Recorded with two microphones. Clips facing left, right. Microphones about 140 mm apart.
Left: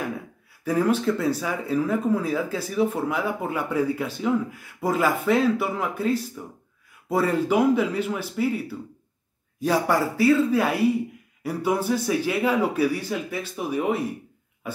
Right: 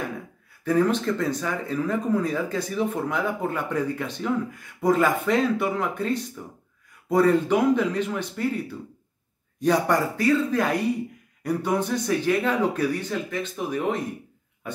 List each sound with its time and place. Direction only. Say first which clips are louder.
0.7 s speech: even; 10° left (ahead or behind)